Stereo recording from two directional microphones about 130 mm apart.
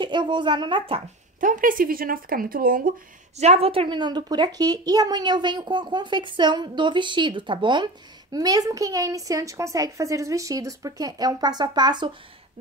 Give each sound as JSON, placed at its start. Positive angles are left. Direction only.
{"t": 0.0, "sound": "speech", "side_deg": -35}
{"t": 1.4, "sound": "speech", "side_deg": -90}
{"t": 3.3, "sound": "speech", "side_deg": -55}